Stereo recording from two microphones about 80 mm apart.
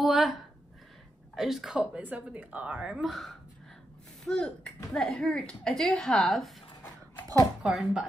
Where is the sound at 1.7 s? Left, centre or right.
Centre.